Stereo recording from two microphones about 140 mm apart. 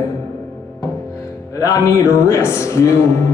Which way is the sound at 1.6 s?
25° left (ahead or behind).